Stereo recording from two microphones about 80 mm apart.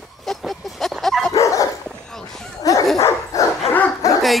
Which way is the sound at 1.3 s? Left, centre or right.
Left.